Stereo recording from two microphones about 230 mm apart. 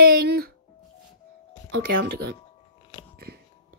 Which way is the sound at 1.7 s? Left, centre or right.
Right.